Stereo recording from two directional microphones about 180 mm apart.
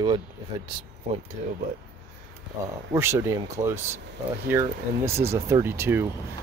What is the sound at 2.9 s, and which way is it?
Speech, 15° right (ahead or behind).